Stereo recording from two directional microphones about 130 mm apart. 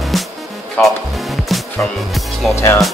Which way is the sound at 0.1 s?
Centre (ahead or behind).